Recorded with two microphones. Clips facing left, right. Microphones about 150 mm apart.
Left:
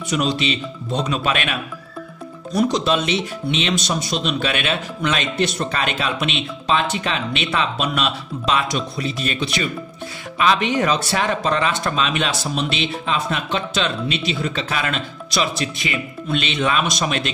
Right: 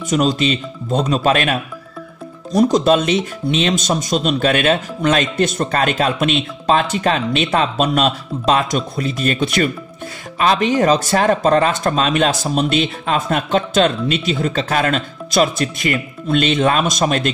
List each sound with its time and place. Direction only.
0.1 s speech: 45° right (ahead or behind)
10.4 s speech: 40° right (ahead or behind)